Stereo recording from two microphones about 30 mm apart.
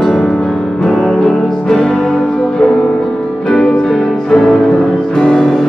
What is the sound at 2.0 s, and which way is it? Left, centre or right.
Music, centre.